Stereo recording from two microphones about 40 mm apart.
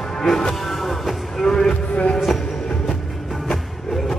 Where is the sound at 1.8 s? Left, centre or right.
Left.